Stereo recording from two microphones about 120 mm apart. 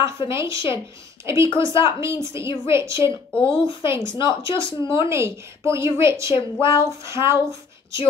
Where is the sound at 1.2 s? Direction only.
25° right (ahead or behind).